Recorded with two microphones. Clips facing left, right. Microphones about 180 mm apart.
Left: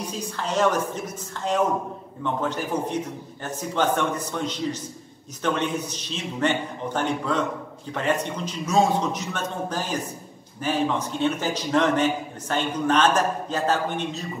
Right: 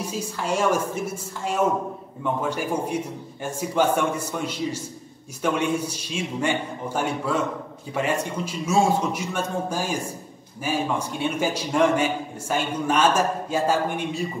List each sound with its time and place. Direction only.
0.0 s a man's voice: 10° right (ahead or behind)